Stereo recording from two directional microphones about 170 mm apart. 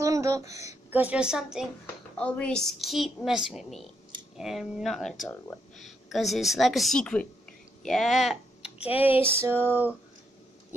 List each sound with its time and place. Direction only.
0.0 s a sound: 20° right (ahead or behind)
0.8 s a woman's voice: 10° right (ahead or behind)
2.1 s a woman's voice: 5° left (ahead or behind); by 9.6 s 15° right (ahead or behind)